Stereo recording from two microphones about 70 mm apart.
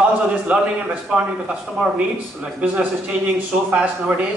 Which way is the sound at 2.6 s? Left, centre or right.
Centre.